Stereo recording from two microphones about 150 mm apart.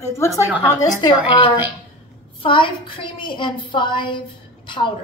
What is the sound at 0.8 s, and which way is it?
A woman's voice, 30° left (ahead or behind).